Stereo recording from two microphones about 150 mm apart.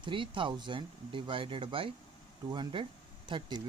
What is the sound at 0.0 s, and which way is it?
Speech, 35° right (ahead or behind).